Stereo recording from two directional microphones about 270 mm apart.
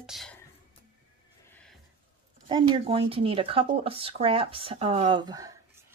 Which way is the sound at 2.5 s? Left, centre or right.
Centre.